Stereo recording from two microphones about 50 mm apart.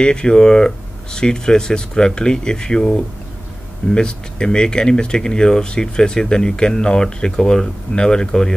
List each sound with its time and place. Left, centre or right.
0.0 s speech: centre